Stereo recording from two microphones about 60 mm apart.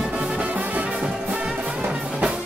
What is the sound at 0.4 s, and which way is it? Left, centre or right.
Music, right.